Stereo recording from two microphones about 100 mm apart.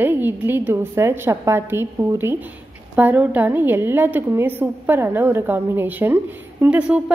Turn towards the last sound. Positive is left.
turn(degrees=-10)  # may be behind; listen again after turning